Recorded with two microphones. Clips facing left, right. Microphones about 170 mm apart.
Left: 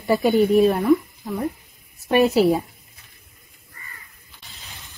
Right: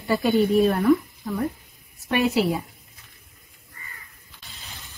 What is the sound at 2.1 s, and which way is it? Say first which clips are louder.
Speech: left 5 dB; 30° left (ahead or behind).